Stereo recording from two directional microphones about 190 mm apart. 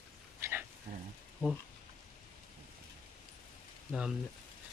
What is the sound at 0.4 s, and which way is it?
Dog, 10° right (ahead or behind).